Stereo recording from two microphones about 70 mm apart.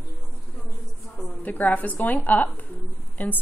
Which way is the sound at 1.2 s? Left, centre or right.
Left.